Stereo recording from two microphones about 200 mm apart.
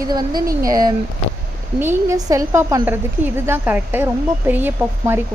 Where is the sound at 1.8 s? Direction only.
15° right (ahead or behind).